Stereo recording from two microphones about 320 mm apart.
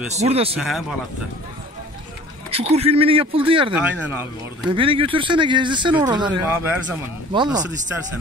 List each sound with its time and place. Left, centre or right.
0.1 s speech: centre
0.6 s speech: centre
2.5 s speech: centre
3.7 s speech: centre